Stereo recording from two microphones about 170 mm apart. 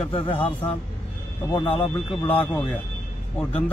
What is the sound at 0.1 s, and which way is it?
A man's voice, 35° left (ahead or behind).